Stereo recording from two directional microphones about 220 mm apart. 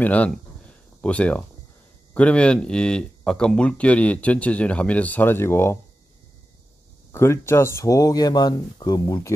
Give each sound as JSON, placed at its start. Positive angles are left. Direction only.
{"t": 0.0, "sound": "speech", "side_deg": 5}
{"t": 7.1, "sound": "speech", "side_deg": 10}